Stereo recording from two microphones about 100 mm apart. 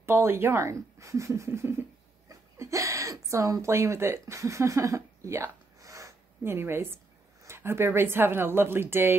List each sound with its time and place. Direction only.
0.0 s speech: 25° right (ahead or behind)